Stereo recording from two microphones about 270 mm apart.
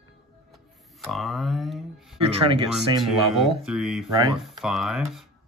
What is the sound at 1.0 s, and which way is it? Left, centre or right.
Speech, centre.